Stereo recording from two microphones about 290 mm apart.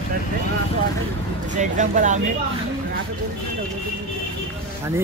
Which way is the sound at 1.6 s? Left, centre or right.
Right.